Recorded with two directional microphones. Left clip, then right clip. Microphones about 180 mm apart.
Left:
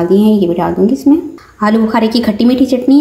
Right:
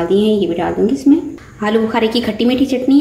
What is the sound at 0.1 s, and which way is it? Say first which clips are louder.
A woman's voice: left 1 dB; 25° left (ahead or behind).